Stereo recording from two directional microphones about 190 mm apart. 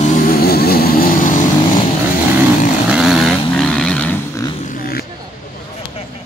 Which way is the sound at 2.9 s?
Centre (ahead or behind).